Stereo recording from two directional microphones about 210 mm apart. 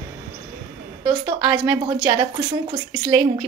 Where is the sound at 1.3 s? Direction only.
20° right (ahead or behind).